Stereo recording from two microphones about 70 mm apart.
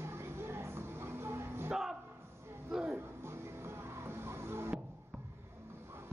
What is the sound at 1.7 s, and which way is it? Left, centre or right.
Music, centre.